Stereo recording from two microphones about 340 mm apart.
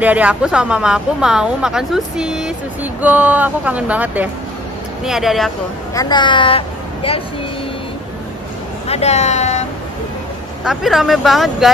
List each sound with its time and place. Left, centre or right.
0.0 s speech: centre
5.9 s a woman's voice: centre
8.8 s speech: centre
10.6 s speech: centre